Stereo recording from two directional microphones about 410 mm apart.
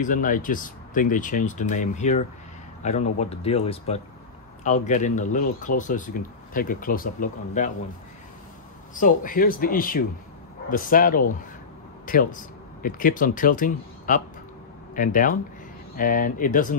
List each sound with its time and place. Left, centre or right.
0.0 s speech: centre
8.9 s speech: centre